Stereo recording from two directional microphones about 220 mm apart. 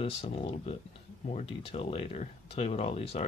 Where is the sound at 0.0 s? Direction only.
25° left (ahead or behind).